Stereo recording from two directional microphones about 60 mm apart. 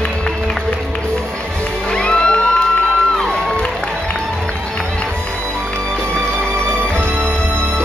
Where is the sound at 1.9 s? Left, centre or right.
Centre.